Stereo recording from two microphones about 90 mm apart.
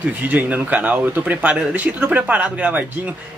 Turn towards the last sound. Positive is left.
turn(degrees=-15)  # may be behind; listen again after turning